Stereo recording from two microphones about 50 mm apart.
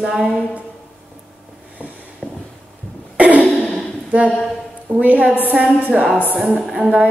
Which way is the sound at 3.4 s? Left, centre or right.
Centre.